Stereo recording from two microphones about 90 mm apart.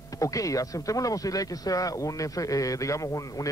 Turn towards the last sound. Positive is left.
turn(degrees=35)  # may be behind; listen again after turning